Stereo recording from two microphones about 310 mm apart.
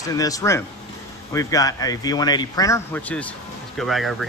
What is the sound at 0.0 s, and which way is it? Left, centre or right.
Speech, centre.